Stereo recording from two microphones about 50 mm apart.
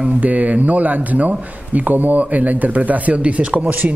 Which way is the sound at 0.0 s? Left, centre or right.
Right.